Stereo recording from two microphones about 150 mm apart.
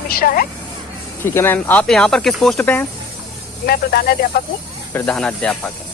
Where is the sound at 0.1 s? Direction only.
75° left (ahead or behind).